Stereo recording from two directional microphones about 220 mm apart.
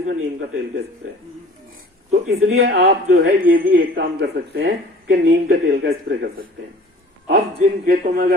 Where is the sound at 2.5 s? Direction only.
45° right (ahead or behind).